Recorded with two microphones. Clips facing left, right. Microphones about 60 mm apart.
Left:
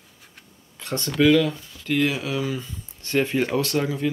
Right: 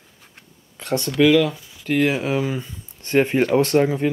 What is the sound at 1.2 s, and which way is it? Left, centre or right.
Speech, right.